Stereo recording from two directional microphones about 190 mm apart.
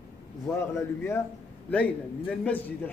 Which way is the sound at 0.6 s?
15° left (ahead or behind).